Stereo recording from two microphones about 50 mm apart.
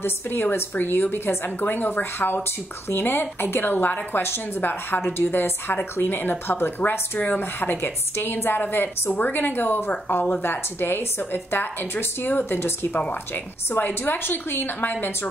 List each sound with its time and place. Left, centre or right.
0.0 s a woman's voice: left
6.8 s a woman's voice: left
10.4 s a woman's voice: left